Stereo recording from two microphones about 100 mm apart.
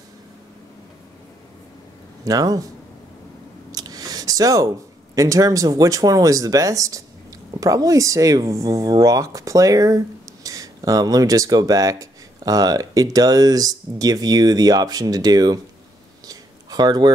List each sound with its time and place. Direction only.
2.2 s speech: 35° right (ahead or behind)
3.7 s speech: 40° right (ahead or behind)
16.3 s a sound: 40° right (ahead or behind)